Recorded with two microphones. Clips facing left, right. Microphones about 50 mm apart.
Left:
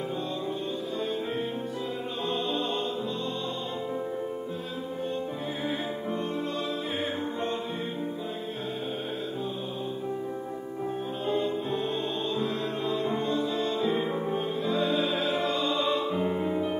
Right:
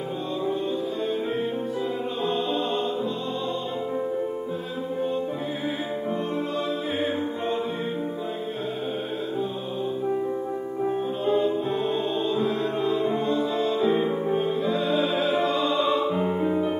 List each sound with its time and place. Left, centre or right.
11.2 s music: centre